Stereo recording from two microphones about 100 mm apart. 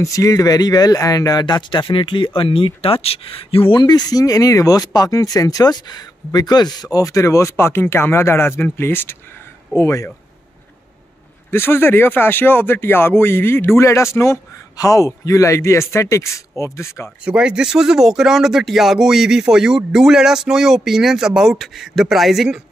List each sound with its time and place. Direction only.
0.0 s speech: 35° left (ahead or behind)
1.4 s speech: 50° left (ahead or behind); by 10.1 s 30° left (ahead or behind)
11.5 s speech: 20° left (ahead or behind)
17.2 s speech: 10° right (ahead or behind)